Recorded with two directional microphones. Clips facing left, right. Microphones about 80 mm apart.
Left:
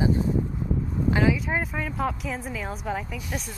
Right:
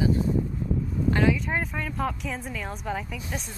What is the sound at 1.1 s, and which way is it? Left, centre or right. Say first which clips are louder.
Speech: left 1 dB; centre.